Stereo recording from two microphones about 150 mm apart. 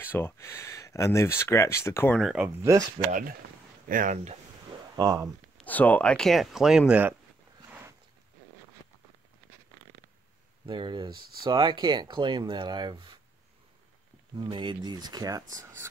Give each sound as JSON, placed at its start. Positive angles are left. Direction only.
{"t": 0.0, "sound": "speech", "side_deg": 15}
{"t": 2.1, "sound": "speech", "side_deg": -5}
{"t": 3.1, "sound": "speech", "side_deg": -65}
{"t": 4.9, "sound": "speech", "side_deg": -25}
{"t": 5.6, "sound": "speech", "side_deg": 10}
{"t": 10.7, "sound": "speech", "side_deg": -30}
{"t": 14.3, "sound": "speech", "side_deg": -30}